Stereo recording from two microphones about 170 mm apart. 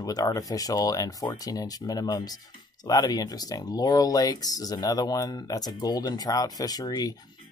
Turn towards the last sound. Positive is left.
turn(degrees=25)  # may be behind; listen again after turning